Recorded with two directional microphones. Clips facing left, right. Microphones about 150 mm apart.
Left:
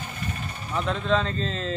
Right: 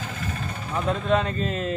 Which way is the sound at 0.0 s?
90° right.